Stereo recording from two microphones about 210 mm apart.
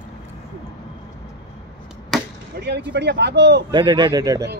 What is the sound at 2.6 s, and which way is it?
Speech, 45° right (ahead or behind).